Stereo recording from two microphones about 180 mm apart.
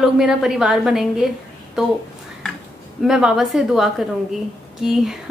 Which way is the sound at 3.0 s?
5° right (ahead or behind).